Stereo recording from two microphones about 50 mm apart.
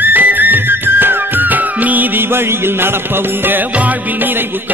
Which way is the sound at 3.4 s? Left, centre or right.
Right.